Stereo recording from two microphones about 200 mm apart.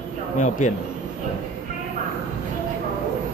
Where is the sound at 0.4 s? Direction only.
35° left (ahead or behind).